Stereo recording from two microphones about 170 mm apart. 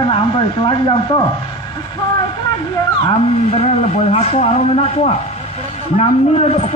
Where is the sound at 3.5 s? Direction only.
40° left (ahead or behind).